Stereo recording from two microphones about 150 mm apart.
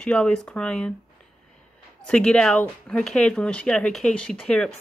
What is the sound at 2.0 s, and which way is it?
Speech, 5° left (ahead or behind).